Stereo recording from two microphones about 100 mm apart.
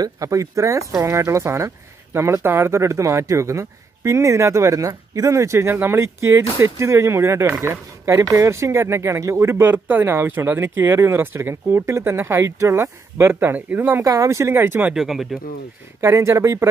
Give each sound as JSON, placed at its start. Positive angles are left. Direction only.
{"t": 0.0, "sound": "speech", "side_deg": -35}
{"t": 14.0, "sound": "speech", "side_deg": -35}
{"t": 15.0, "sound": "speech", "side_deg": -5}
{"t": 16.0, "sound": "speech", "side_deg": -30}